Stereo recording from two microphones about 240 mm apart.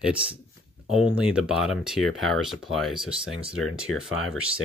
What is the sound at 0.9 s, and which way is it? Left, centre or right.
Speech, centre.